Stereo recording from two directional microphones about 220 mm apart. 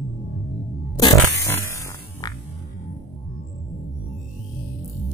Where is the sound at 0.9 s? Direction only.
15° left (ahead or behind).